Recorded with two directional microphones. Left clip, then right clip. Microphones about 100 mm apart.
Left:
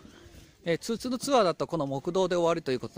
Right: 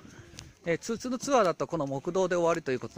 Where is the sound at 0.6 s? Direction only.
45° left (ahead or behind).